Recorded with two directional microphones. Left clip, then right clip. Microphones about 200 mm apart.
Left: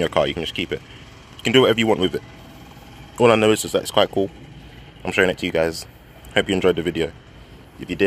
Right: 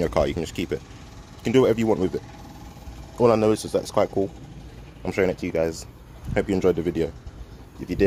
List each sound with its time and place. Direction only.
0.0 s speech: 10° right (ahead or behind)
1.4 s speech: centre (ahead or behind)
3.6 s speech: 15° left (ahead or behind)
5.0 s speech: centre (ahead or behind)